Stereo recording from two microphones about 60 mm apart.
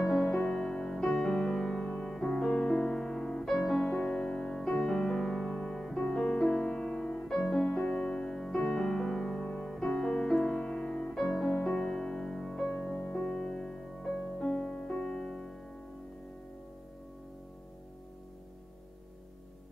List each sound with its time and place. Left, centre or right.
0.0 s music: centre
0.5 s music: centre
3.4 s music: centre
3.9 s music: centre
7.2 s music: centre
7.6 s music: centre
10.5 s music: centre
12.9 s music: left
13.2 s music: centre